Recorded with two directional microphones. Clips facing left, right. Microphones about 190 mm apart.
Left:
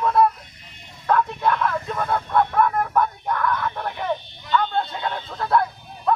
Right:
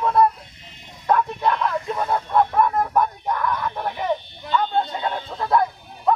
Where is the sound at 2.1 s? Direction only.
15° right (ahead or behind).